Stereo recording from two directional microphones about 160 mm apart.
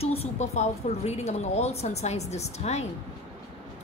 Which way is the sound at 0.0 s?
40° left (ahead or behind).